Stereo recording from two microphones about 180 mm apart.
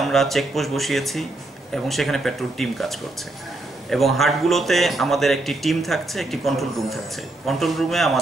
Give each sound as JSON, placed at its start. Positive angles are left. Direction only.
{"t": 0.0, "sound": "a man's voice", "side_deg": 0}